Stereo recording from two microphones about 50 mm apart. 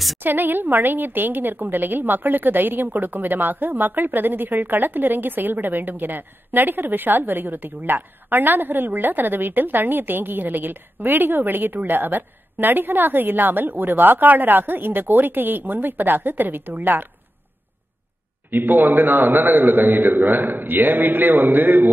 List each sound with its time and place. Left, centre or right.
0.2 s a woman's voice: right
18.5 s a woman's voice: right